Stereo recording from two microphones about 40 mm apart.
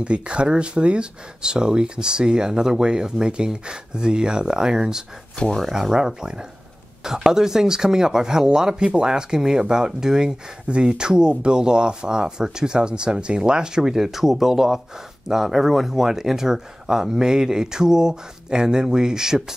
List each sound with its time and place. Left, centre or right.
0.0 s speech: right